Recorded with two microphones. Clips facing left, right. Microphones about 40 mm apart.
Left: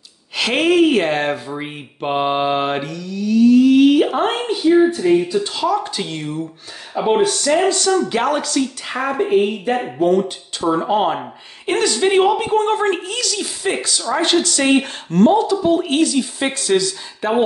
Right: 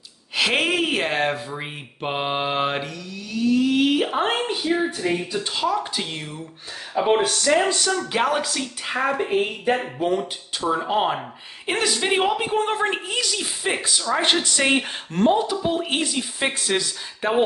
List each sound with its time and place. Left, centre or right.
0.4 s a woman's voice: centre
10.7 s a woman's voice: centre; by 14.6 s right
14.6 s a woman's voice: centre
16.5 s speech: right